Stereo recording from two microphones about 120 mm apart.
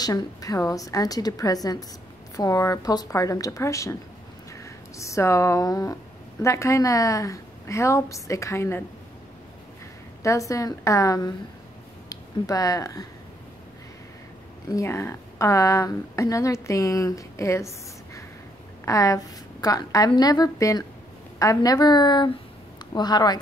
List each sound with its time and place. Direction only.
0.0 s a woman's voice: 30° left (ahead or behind)
4.9 s speech: 25° left (ahead or behind)
10.2 s speech: 25° left (ahead or behind)
14.7 s a woman's voice: 25° left (ahead or behind)